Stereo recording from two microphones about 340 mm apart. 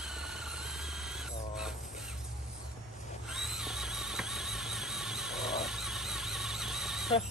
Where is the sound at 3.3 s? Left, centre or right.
Centre.